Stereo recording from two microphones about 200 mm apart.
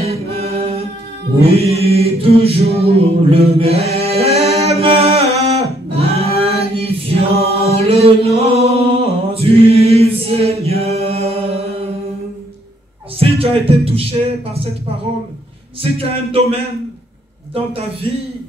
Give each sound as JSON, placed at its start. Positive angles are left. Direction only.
{"t": 0.0, "sound": "singing", "side_deg": -30}
{"t": 1.4, "sound": "chant", "side_deg": -30}
{"t": 13.2, "sound": "music", "side_deg": -30}
{"t": 15.8, "sound": "speech", "side_deg": -30}